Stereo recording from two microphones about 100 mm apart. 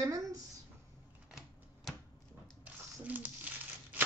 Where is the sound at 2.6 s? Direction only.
15° right (ahead or behind).